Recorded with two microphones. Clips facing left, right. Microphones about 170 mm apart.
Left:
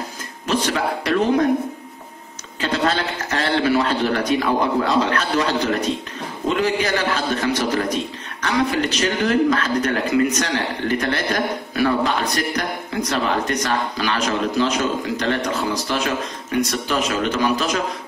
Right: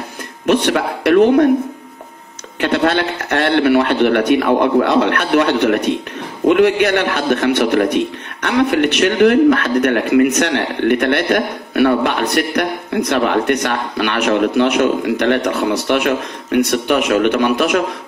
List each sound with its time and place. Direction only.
0.5 s a man's voice: 60° right (ahead or behind)
2.6 s a man's voice: 60° right (ahead or behind)